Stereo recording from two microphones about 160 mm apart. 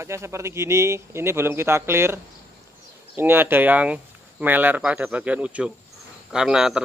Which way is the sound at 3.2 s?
15° right (ahead or behind).